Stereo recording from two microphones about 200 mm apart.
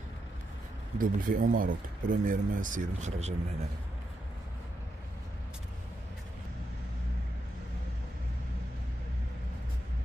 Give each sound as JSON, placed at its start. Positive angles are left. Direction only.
{"t": 0.9, "sound": "speech", "side_deg": -45}